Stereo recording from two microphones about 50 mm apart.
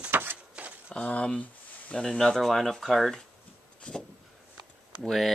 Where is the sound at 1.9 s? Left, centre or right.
Centre.